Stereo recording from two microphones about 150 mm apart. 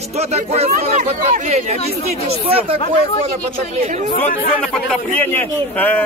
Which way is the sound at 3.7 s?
50° right (ahead or behind).